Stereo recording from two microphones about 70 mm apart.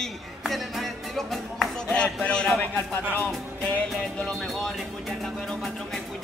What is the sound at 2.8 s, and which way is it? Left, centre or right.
Speech, left.